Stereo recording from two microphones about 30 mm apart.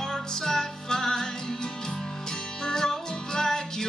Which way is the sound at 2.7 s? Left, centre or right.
Centre.